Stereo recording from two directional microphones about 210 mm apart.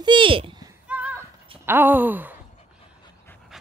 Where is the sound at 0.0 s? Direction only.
25° right (ahead or behind).